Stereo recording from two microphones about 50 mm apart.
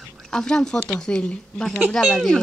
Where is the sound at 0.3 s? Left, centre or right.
Centre.